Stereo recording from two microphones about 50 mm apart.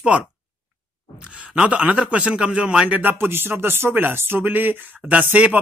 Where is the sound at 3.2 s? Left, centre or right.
Right.